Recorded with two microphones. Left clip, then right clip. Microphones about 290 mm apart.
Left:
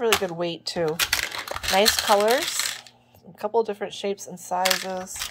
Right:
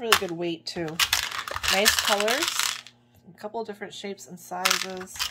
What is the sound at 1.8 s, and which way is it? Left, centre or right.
Speech, left.